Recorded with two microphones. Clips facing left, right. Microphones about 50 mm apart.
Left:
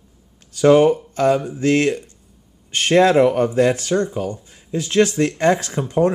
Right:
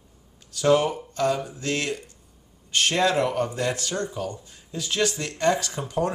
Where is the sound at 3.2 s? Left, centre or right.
Left.